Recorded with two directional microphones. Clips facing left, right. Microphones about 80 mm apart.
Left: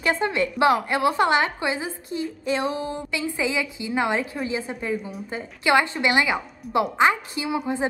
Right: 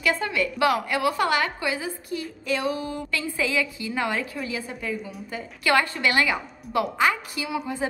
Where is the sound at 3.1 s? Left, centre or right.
Centre.